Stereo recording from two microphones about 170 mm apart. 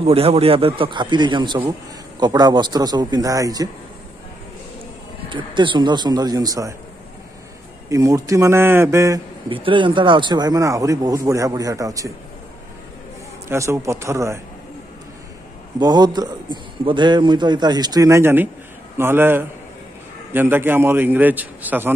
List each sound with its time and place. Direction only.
0.0 s a man's voice: 35° right (ahead or behind); by 3.6 s 20° right (ahead or behind)
5.3 s a man's voice: 30° right (ahead or behind)
7.9 s a man's voice: 20° right (ahead or behind)
9.5 s a man's voice: 30° right (ahead or behind)
13.5 s a man's voice: 15° right (ahead or behind)
15.8 s a man's voice: 25° right (ahead or behind)